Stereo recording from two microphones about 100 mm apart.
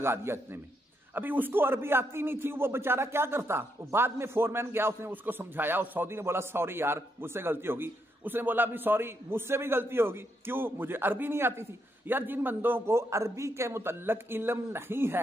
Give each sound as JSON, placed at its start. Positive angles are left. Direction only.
{"t": 0.0, "sound": "a man's voice", "side_deg": -25}